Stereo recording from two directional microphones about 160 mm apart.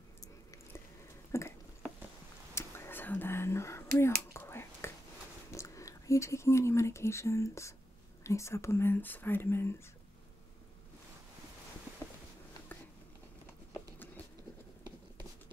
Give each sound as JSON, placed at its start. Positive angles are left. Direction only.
{"t": 1.3, "sound": "a sound", "side_deg": 15}
{"t": 2.5, "sound": "whispering", "side_deg": 15}
{"t": 5.5, "sound": "speech", "side_deg": 20}